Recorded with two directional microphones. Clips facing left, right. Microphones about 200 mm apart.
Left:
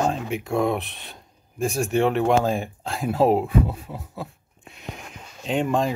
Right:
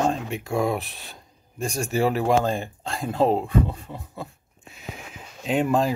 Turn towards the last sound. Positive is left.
turn(degrees=-5)  # may be behind; listen again after turning